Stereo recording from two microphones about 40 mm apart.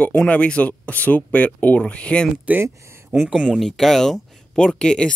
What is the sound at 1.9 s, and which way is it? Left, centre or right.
Speech, left.